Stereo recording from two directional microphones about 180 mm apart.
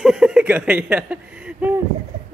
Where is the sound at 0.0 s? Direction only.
5° right (ahead or behind).